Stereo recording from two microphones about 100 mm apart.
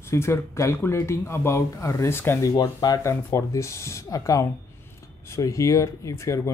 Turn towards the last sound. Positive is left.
turn(degrees=30)  # may be behind; listen again after turning